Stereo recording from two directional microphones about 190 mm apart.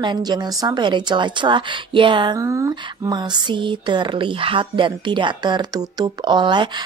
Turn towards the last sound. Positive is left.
turn(degrees=-25)  # may be behind; listen again after turning